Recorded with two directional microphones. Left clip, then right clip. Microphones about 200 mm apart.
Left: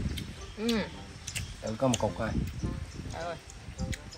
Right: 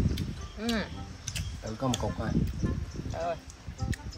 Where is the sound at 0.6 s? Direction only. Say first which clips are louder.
Left 1 dB; 5° right (ahead or behind).